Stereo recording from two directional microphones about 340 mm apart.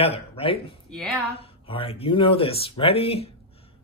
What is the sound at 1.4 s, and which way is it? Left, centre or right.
Speech, centre.